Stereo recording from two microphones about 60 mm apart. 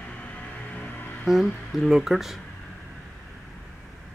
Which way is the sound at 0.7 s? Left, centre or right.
Left.